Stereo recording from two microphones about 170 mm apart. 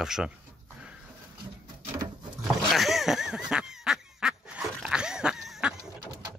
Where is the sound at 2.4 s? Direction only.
Centre (ahead or behind).